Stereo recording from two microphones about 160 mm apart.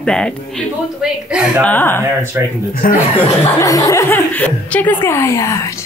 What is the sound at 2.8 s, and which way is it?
Speech, 60° left (ahead or behind).